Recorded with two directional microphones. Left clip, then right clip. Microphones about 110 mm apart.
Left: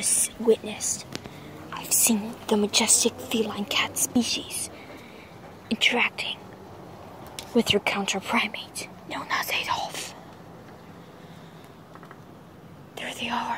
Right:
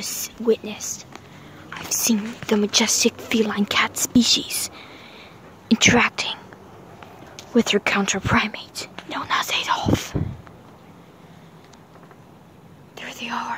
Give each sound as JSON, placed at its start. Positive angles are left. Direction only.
{"t": 0.0, "sound": "speech", "side_deg": -30}
{"t": 5.7, "sound": "speech", "side_deg": -55}
{"t": 7.5, "sound": "speech", "side_deg": -35}
{"t": 9.3, "sound": "speech", "side_deg": -25}
{"t": 12.9, "sound": "whispering", "side_deg": -15}